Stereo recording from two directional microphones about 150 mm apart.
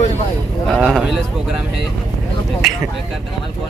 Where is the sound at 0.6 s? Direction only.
Centre (ahead or behind).